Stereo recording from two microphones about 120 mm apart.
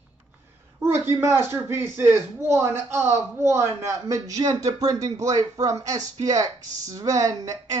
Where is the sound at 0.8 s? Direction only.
20° right (ahead or behind).